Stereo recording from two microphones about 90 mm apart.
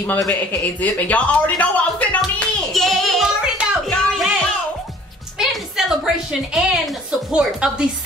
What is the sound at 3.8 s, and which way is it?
Music, 5° left (ahead or behind).